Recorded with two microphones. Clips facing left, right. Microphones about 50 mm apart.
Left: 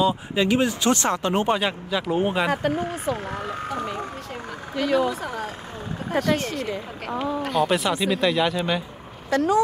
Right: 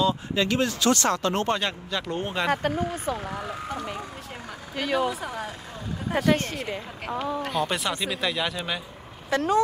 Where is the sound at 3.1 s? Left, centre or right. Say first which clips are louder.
Left 2 dB; left.